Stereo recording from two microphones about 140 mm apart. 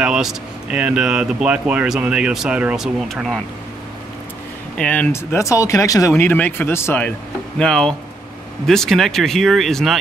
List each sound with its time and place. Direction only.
0.0 s speech: 5° right (ahead or behind)
4.7 s speech: 10° left (ahead or behind)
7.5 s speech: 5° left (ahead or behind)